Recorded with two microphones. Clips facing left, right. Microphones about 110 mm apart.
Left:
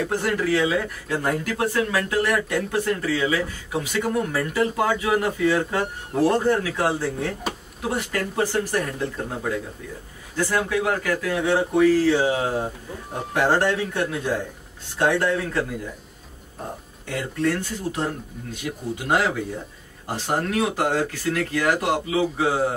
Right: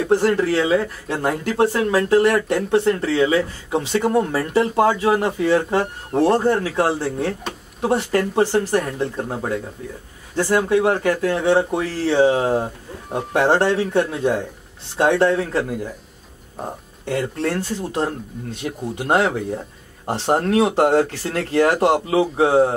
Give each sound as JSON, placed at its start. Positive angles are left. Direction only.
{"t": 0.1, "sound": "speech", "side_deg": -30}
{"t": 7.5, "sound": "speech", "side_deg": 5}
{"t": 7.8, "sound": "speech", "side_deg": -30}
{"t": 17.0, "sound": "speech", "side_deg": -30}